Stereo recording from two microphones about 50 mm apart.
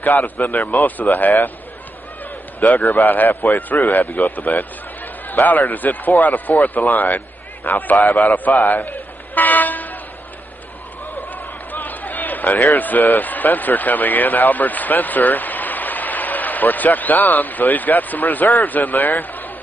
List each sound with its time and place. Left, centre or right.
0.0 s speech: left
2.7 s a man's voice: left
9.3 s vehicle: left
11.1 s a sound: left
12.7 s speech: left